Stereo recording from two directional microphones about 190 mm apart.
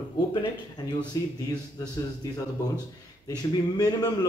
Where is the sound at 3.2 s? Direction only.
20° left (ahead or behind).